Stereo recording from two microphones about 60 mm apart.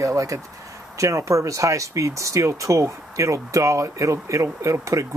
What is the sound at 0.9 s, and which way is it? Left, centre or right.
Speech, right.